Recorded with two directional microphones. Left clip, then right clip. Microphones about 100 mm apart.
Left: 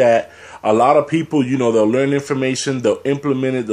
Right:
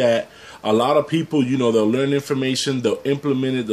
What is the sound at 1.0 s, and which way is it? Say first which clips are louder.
Speech: left 3 dB; 40° right (ahead or behind).